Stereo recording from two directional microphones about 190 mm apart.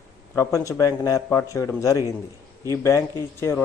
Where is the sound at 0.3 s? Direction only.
15° left (ahead or behind).